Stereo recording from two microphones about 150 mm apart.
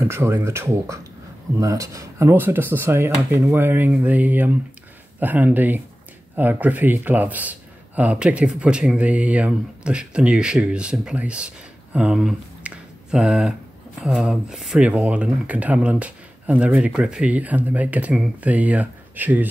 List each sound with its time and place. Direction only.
0.0 s a man's voice: 15° right (ahead or behind)